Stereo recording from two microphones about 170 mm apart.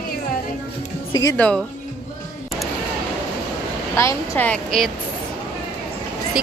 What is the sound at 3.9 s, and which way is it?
Speech, 15° left (ahead or behind).